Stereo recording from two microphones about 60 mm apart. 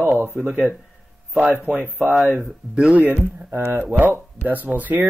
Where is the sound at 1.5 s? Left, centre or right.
Right.